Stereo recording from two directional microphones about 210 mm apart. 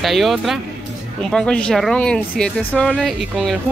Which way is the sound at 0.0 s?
Centre (ahead or behind).